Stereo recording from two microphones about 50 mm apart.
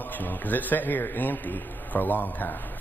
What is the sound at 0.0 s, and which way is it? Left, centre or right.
A man's voice, left.